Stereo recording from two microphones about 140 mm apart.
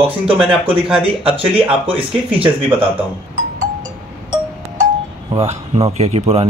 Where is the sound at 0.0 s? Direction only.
40° right (ahead or behind).